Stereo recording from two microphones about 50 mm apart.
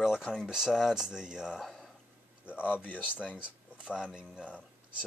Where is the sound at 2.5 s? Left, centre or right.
Left.